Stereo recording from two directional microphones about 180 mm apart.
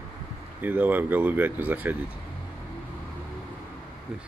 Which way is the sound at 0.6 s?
10° right (ahead or behind).